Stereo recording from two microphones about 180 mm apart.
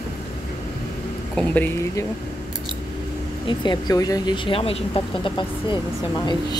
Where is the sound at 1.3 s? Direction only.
10° left (ahead or behind).